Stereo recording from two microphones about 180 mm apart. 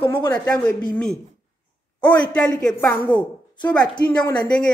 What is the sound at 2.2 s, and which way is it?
Speech, 5° left (ahead or behind).